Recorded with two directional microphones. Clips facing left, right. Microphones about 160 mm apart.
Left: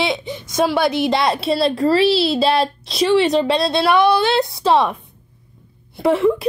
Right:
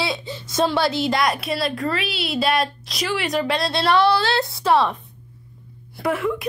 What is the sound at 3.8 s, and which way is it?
A woman's voice, 15° left (ahead or behind).